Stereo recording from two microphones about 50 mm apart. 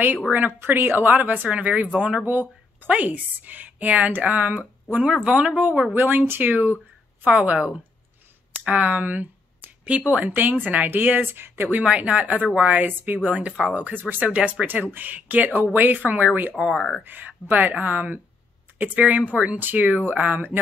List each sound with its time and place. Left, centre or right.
0.3 s a woman's voice: right
2.2 s a woman's voice: right
7.3 s speech: right
8.6 s a sound: right
9.9 s a woman's voice: right
10.9 s speech: right
11.8 s a woman's voice: right
13.9 s a woman's voice: right
14.2 s speech: right
14.7 s a woman's voice: right
16.5 s speech: centre
17.0 s a woman's voice: right